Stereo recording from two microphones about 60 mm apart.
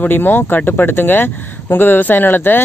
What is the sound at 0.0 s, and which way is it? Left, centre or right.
Speech, left.